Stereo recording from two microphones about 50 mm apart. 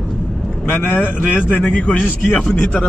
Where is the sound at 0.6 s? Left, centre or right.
Left.